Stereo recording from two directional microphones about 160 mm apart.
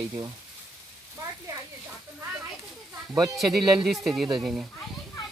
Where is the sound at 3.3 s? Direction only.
Centre (ahead or behind).